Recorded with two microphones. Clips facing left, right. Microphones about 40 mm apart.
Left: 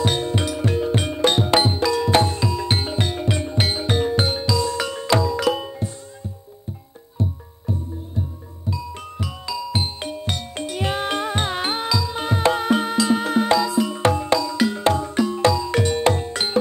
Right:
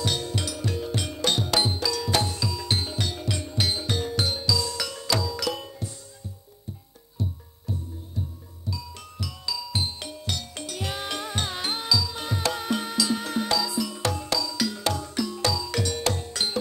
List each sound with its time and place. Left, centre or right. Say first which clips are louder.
0.0 s music: left 7 dB; left
7.2 s music: left 6 dB; left